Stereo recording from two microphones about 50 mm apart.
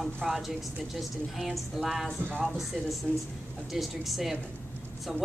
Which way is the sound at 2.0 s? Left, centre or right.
Left.